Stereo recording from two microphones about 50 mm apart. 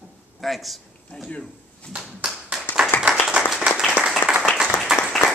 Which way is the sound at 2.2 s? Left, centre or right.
Centre.